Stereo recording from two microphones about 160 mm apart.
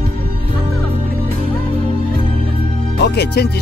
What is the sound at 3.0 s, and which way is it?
Music, 90° left.